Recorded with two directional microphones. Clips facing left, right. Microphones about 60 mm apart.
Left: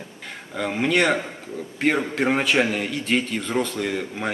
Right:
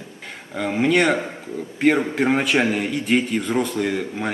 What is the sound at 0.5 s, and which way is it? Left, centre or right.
A man's voice, centre.